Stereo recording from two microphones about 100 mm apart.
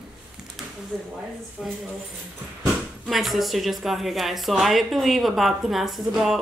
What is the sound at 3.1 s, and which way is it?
Speech, centre (ahead or behind).